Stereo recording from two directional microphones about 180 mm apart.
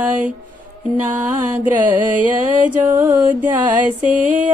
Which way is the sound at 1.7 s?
45° right (ahead or behind).